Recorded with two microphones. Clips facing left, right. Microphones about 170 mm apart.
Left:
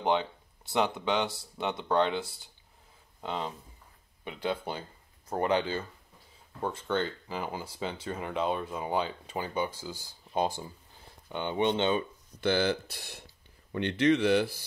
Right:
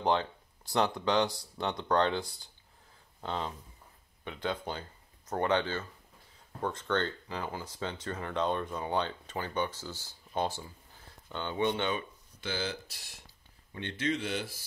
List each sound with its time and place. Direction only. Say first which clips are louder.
0.7 s speech: left 1 dB; centre (ahead or behind); by 12.0 s 25° left (ahead or behind)
12.4 s speech: left 9 dB; 60° left (ahead or behind)
13.7 s speech: left 8 dB; 70° left (ahead or behind)